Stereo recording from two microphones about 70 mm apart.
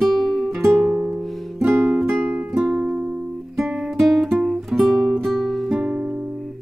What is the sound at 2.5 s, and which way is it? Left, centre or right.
Music, centre.